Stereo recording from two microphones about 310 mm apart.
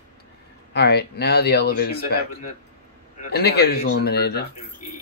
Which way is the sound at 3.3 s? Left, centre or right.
Left.